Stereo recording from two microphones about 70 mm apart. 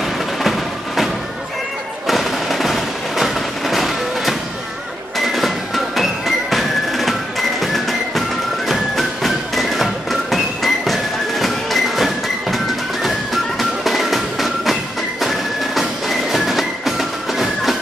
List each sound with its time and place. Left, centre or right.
0.0 s music: centre
2.0 s a sound: centre
5.9 s music: centre